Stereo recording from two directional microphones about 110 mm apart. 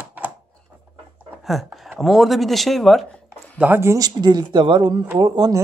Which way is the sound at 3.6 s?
20° right (ahead or behind).